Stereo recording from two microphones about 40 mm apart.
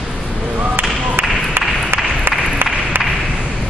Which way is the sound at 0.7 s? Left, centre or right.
Right.